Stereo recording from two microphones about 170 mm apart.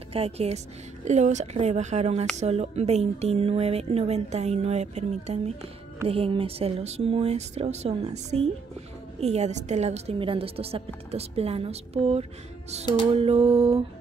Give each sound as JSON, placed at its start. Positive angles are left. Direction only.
{"t": 0.1, "sound": "a woman's voice", "side_deg": -35}